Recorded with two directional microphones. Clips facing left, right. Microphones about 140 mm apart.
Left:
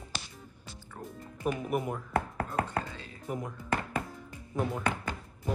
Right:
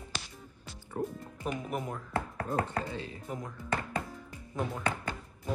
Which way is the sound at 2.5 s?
20° right (ahead or behind).